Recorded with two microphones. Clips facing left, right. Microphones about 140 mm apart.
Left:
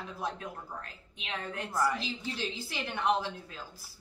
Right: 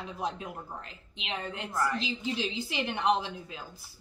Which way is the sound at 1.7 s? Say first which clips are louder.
Left 1 dB; 10° left (ahead or behind).